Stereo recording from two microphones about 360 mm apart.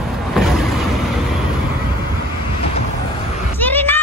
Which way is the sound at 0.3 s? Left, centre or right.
Centre.